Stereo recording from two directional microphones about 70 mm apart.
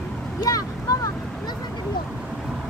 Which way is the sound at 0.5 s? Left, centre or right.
Left.